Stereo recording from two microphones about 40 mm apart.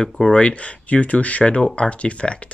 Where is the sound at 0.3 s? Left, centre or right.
Left.